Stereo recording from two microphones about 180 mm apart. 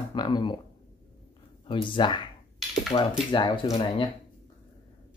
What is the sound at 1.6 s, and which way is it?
Speech, 25° left (ahead or behind).